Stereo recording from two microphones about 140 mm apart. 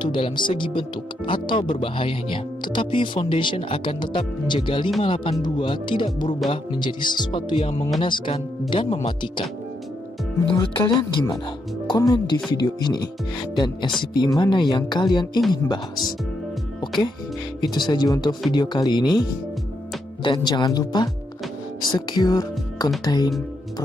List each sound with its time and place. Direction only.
0.0 s speech: 35° left (ahead or behind)
10.6 s speech: 35° left (ahead or behind)
17.6 s speech: 30° left (ahead or behind)
20.2 s speech: 30° left (ahead or behind)